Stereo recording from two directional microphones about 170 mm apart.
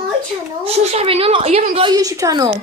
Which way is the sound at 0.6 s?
40° right (ahead or behind).